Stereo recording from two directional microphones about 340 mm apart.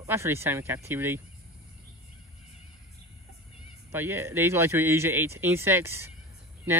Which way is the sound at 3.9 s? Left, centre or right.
Centre.